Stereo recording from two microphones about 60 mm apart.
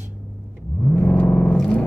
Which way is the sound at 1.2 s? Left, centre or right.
Left.